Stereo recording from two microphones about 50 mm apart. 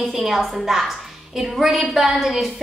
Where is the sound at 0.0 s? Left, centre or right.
Centre.